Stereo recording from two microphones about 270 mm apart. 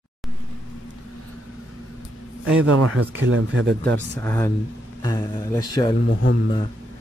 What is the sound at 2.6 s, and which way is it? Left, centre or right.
Speech, right.